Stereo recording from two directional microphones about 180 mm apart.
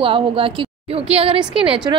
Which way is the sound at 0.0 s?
30° right (ahead or behind).